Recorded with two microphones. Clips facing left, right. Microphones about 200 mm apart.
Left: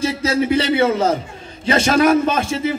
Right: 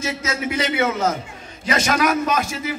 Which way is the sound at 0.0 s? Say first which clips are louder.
Left 7 dB; 35° left (ahead or behind).